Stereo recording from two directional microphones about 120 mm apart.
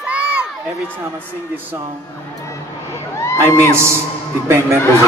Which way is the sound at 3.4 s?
20° right (ahead or behind).